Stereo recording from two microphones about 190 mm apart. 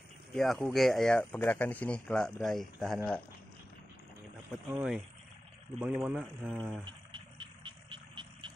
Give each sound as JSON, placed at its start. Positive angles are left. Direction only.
{"t": 0.3, "sound": "speech", "side_deg": 5}
{"t": 4.6, "sound": "speech", "side_deg": -5}
{"t": 6.8, "sound": "vehicle", "side_deg": -25}